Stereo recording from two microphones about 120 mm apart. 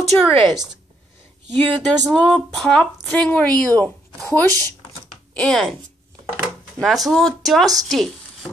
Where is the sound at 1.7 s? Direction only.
10° left (ahead or behind).